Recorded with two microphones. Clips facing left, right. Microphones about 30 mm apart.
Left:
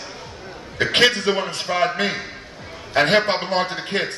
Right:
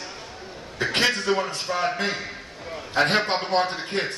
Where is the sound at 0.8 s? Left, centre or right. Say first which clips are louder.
Left 6 dB; left.